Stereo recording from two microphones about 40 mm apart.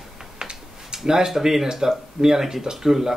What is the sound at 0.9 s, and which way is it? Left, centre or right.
Speech, centre.